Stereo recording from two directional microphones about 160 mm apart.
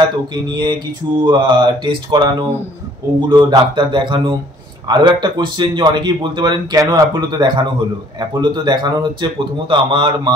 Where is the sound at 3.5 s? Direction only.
30° right (ahead or behind).